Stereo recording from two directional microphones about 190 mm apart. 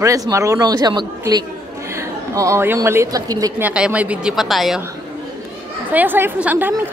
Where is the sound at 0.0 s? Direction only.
15° right (ahead or behind); by 4.8 s centre (ahead or behind).